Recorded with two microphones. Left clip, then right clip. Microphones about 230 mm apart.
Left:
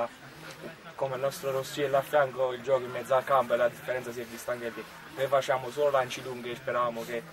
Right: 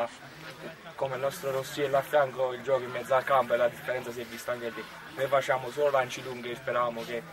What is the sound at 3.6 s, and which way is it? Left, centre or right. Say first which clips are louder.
Speech: even; centre.